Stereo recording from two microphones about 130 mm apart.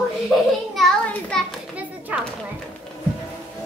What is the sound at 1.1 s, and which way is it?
Speech, 5° left (ahead or behind).